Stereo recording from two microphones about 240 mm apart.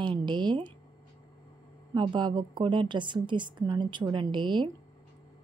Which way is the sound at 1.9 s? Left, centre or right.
Centre.